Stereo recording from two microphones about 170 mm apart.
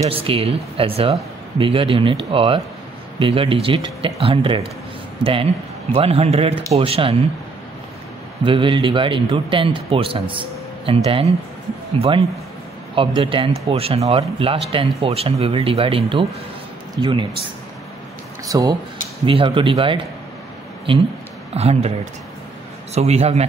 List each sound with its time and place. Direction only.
0.1 s speech: 35° right (ahead or behind)
8.5 s speech: 30° right (ahead or behind)
18.5 s speech: 20° right (ahead or behind)
19.2 s speech: 30° right (ahead or behind)
21.5 s speech: 35° right (ahead or behind)
22.9 s speech: 40° right (ahead or behind)